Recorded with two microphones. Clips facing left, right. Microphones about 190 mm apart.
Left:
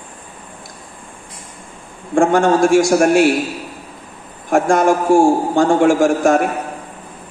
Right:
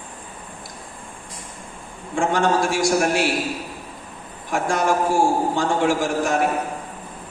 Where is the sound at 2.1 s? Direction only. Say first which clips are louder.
Left 7 dB; 50° left (ahead or behind).